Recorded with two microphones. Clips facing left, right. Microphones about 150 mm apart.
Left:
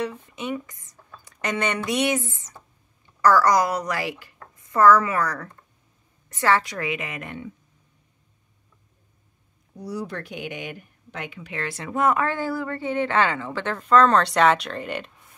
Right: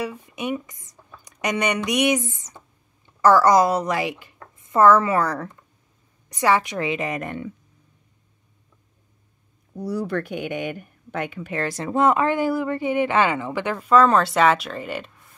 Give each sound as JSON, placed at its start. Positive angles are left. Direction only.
{"t": 0.0, "sound": "a woman's voice", "side_deg": -10}
{"t": 6.2, "sound": "a woman's voice", "side_deg": -15}
{"t": 9.8, "sound": "speech", "side_deg": -55}